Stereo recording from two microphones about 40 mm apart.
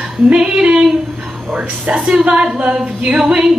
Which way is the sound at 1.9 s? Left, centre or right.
Right.